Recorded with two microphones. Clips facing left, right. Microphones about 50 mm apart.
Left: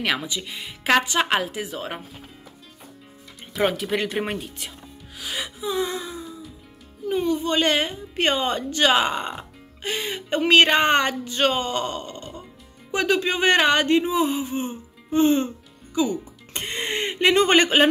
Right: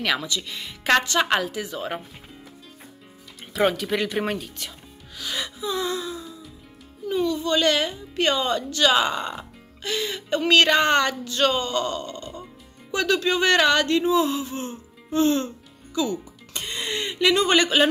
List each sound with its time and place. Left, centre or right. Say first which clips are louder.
0.0 s speech: even; centre
1.8 s speech: right 2 dB; centre
3.5 s speech: right 1 dB; centre
5.8 s a sound: left 1 dB; left
7.1 s a woman's voice: even; left
16.5 s speech: left 2 dB; left